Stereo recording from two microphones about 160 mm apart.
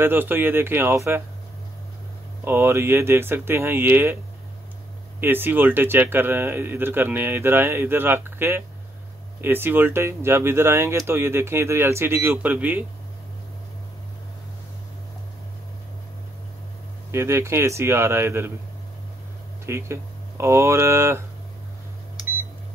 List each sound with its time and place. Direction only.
0.0 s speech: 15° right (ahead or behind)
2.4 s speech: 15° right (ahead or behind)
5.2 s speech: 15° right (ahead or behind)
17.1 s speech: 15° right (ahead or behind)
19.6 s speech: 15° right (ahead or behind)